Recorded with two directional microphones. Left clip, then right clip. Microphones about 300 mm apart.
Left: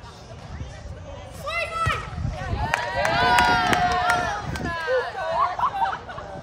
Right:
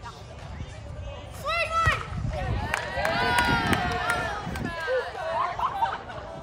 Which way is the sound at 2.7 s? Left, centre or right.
Left.